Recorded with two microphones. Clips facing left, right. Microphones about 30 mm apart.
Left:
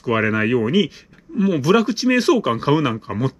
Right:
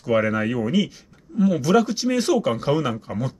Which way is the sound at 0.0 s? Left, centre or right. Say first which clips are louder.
Left 2 dB; left.